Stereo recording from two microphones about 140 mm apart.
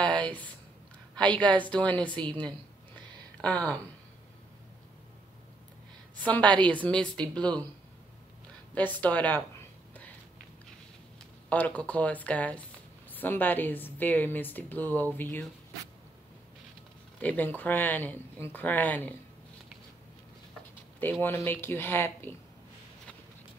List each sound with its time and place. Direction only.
0.0 s a sound: 10° left (ahead or behind)
1.1 s a woman's voice: 10° left (ahead or behind)
6.2 s speech: 10° left (ahead or behind)
8.7 s speech: 10° left (ahead or behind)
11.4 s speech: 10° left (ahead or behind)
17.2 s speech: 10° left (ahead or behind)
21.0 s speech: 15° left (ahead or behind)